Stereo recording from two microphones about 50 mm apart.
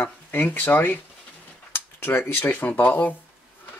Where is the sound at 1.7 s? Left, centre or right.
Left.